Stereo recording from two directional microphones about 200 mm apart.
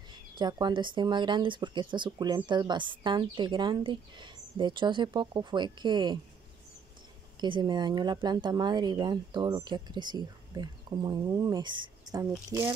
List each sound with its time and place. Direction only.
0.4 s speech: 20° right (ahead or behind)
7.3 s speech: 25° right (ahead or behind)